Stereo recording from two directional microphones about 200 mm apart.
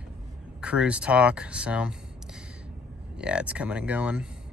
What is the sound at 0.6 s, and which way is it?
Speech, 5° right (ahead or behind).